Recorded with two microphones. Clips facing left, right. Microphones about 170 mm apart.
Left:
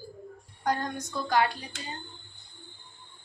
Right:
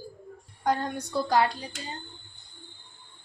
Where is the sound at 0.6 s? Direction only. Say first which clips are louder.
Right 2 dB; 35° right (ahead or behind).